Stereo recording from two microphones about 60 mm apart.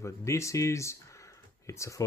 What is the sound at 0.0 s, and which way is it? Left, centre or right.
Speech, left.